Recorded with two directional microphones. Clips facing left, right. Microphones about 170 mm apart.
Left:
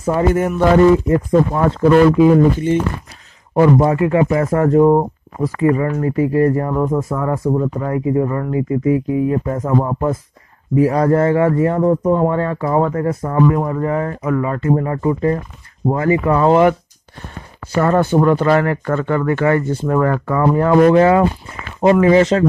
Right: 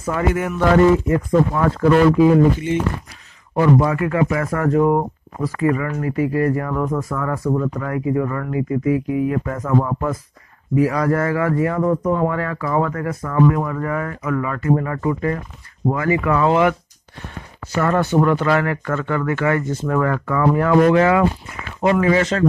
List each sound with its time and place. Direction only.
0.0 s speech: 35° left (ahead or behind)
3.5 s speech: 30° left (ahead or behind)
17.7 s speech: 35° left (ahead or behind)